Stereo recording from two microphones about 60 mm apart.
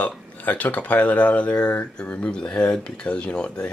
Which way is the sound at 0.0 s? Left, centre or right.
Left.